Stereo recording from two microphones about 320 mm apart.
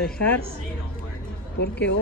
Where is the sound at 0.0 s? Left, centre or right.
Centre.